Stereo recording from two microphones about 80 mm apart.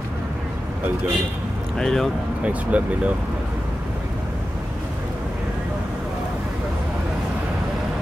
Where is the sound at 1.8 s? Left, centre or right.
Centre.